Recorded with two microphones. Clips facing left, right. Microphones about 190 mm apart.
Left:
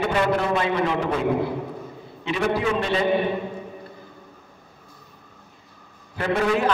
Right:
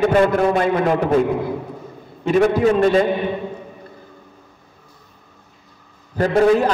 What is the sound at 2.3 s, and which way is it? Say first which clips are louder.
Speech: right 8 dB; 45° right (ahead or behind).